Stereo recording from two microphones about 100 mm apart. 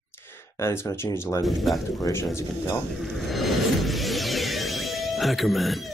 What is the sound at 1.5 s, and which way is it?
Speech, centre (ahead or behind).